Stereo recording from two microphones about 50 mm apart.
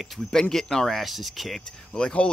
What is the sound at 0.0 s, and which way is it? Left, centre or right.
Speech, centre.